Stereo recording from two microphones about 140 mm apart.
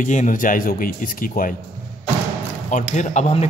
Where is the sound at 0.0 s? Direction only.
65° left (ahead or behind).